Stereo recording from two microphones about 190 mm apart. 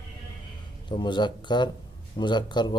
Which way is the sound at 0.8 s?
25° left (ahead or behind).